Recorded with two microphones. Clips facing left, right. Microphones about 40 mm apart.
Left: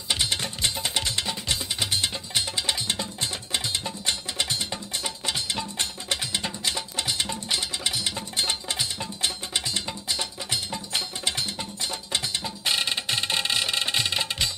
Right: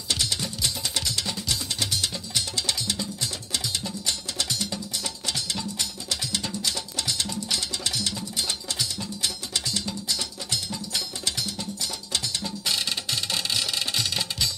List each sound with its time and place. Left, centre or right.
0.1 s music: left